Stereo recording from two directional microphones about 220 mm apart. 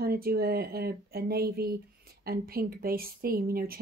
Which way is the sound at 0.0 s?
45° right (ahead or behind).